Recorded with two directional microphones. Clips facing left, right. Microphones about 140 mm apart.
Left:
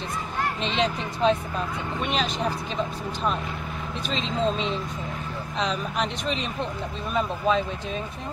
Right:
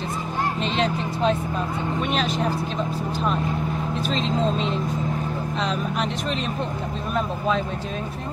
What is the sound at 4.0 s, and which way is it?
Speech, centre (ahead or behind).